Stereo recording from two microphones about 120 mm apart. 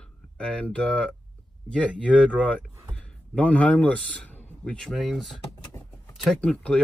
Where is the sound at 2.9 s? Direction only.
10° left (ahead or behind).